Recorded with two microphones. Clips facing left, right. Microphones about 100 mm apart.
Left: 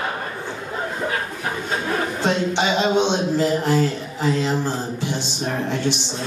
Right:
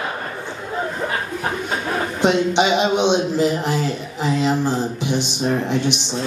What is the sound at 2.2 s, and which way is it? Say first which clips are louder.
A man's voice: right 5 dB; 15° right (ahead or behind).